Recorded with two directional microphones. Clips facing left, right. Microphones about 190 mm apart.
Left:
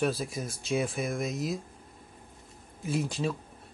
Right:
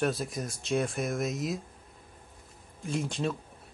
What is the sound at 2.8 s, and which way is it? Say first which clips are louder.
Speech: left 1 dB; 5° left (ahead or behind).